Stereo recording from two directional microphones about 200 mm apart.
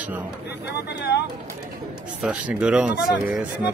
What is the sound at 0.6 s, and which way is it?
Speech, 55° left (ahead or behind).